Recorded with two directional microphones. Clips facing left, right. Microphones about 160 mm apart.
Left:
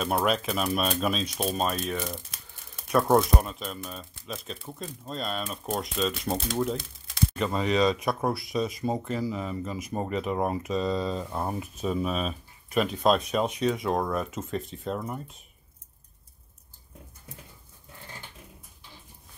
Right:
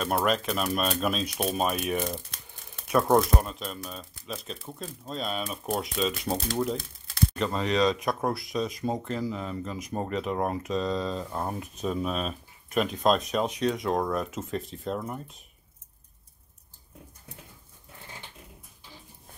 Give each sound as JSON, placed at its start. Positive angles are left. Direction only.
{"t": 0.0, "sound": "speech", "side_deg": 0}
{"t": 2.0, "sound": "speech", "side_deg": 0}